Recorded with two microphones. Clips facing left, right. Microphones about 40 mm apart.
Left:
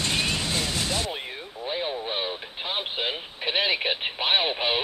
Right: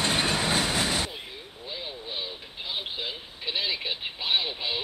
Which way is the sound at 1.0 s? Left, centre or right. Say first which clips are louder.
Left 6 dB; left.